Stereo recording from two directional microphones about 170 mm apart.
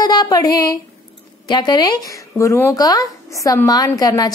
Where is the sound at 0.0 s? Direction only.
25° left (ahead or behind).